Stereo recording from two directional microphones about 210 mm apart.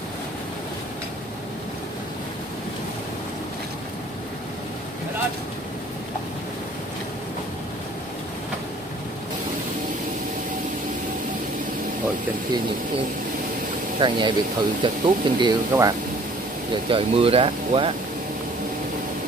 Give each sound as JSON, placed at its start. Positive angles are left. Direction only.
{"t": 13.9, "sound": "speech", "side_deg": -20}
{"t": 16.9, "sound": "speech", "side_deg": -25}